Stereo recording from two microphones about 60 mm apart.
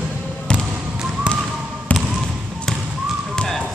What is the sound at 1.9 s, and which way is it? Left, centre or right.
Trickle, left.